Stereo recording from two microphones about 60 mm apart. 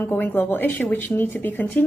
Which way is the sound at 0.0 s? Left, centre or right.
Left.